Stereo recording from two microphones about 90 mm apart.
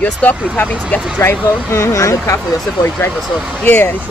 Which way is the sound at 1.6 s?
35° left (ahead or behind).